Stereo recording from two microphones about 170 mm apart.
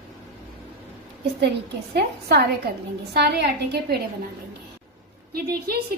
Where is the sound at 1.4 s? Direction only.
80° right.